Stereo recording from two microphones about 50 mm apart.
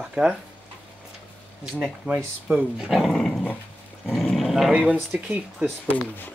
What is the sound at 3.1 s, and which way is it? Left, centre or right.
Dog, centre.